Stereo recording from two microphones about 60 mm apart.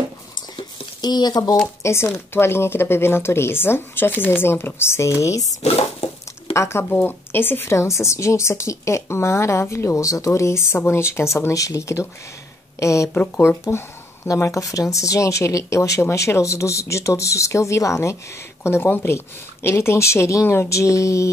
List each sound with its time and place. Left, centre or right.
1.0 s speech: left
1.8 s speech: left
5.2 s a sound: left
6.5 s a woman's voice: left
6.9 s speech: left
7.7 s a woman's voice: left
11.5 s speech: left
13.4 s a woman's voice: left
14.4 s a woman's voice: left